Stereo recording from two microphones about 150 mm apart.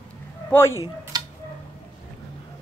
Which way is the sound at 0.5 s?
15° left (ahead or behind).